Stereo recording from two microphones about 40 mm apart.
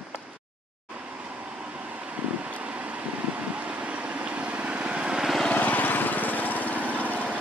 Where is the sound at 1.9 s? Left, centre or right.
Right.